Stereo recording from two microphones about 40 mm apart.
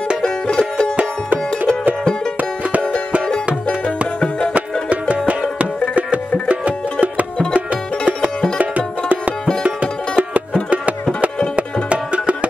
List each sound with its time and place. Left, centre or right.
0.2 s music: centre
4.6 s music: right
6.5 s music: right
8.5 s music: right
11.5 s music: right